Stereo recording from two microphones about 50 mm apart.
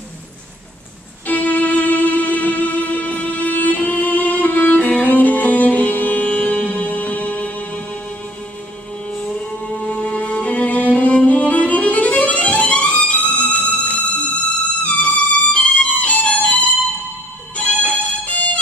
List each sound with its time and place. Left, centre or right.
1.2 s music: left
9.1 s music: left
17.9 s music: left